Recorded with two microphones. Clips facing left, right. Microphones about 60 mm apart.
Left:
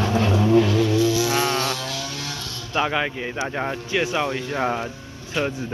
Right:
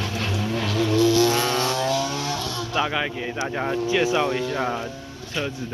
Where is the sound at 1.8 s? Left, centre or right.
Right.